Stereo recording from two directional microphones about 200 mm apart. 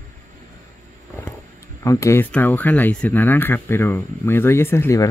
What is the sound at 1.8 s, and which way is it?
Speech, 15° left (ahead or behind).